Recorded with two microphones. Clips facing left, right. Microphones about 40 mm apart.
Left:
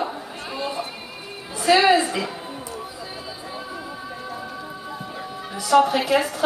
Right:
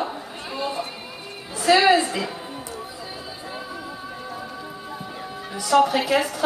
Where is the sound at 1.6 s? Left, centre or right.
Centre.